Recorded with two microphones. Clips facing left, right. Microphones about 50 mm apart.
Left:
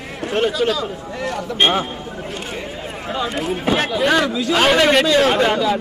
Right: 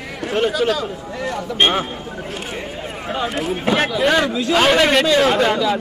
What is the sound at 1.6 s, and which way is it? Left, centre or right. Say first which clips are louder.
Speech: even; centre.